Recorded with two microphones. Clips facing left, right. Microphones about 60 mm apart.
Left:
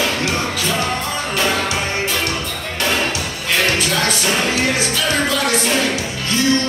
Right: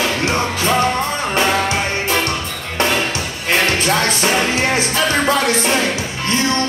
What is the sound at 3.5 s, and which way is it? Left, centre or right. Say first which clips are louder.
Music: right 2 dB; right.